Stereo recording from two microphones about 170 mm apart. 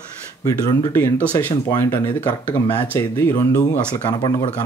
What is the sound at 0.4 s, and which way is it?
Speech, 20° left (ahead or behind).